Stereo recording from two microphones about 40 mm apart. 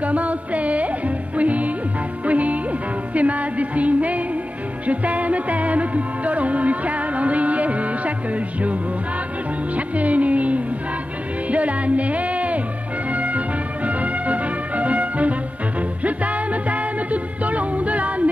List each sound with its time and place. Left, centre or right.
0.0 s music: right
9.8 s music: right